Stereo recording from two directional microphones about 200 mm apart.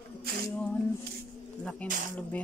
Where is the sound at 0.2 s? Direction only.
50° right (ahead or behind).